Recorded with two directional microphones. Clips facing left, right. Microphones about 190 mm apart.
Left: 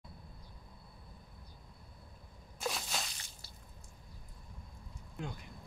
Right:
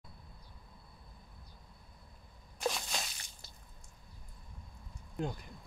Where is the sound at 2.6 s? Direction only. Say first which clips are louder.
Right 3 dB; centre (ahead or behind).